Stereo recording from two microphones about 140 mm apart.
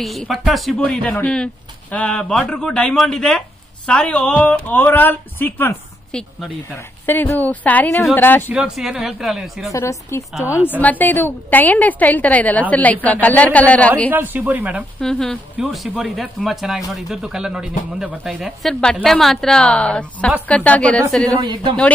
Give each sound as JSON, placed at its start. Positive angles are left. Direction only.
{"t": 0.0, "sound": "speech", "side_deg": 0}
{"t": 8.5, "sound": "speech", "side_deg": -5}
{"t": 9.7, "sound": "speech", "side_deg": 20}
{"t": 14.1, "sound": "speech", "side_deg": -10}
{"t": 15.0, "sound": "speech", "side_deg": 5}